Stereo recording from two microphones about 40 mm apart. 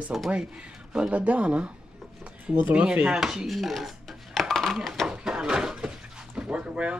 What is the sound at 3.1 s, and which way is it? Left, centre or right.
Chopping, centre.